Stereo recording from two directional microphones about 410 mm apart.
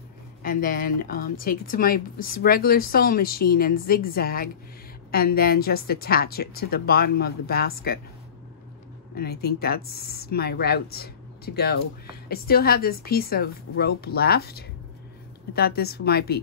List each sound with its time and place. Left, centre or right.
0.4 s speech: left
9.1 s speech: left